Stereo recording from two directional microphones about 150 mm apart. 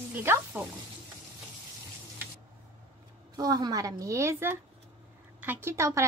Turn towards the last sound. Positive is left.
turn(degrees=-20)  # may be behind; listen again after turning